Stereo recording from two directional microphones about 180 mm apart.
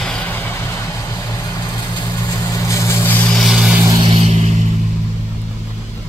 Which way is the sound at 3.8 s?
25° right (ahead or behind).